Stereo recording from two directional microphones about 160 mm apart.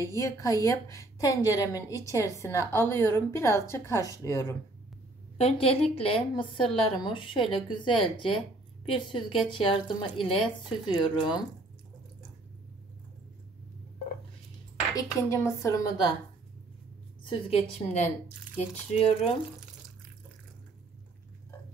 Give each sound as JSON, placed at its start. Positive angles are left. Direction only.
{"t": 0.0, "sound": "a woman's voice", "side_deg": 20}
{"t": 5.4, "sound": "a woman's voice", "side_deg": 40}
{"t": 15.0, "sound": "a woman's voice", "side_deg": 15}
{"t": 17.2, "sound": "a woman's voice", "side_deg": 35}